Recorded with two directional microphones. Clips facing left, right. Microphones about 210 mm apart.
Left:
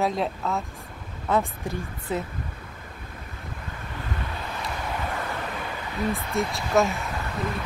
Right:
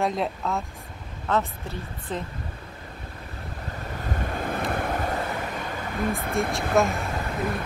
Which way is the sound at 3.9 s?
45° right (ahead or behind).